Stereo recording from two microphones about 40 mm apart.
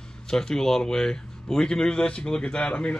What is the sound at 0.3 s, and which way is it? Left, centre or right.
Speech, centre.